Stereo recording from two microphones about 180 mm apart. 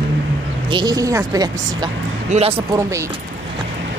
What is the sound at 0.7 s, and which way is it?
A woman's voice, 25° right (ahead or behind).